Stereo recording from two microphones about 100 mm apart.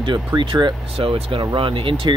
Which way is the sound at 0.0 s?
50° right (ahead or behind).